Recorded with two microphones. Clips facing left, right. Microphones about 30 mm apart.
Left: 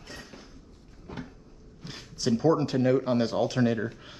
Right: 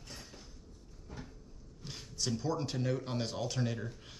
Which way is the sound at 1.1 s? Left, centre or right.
Left.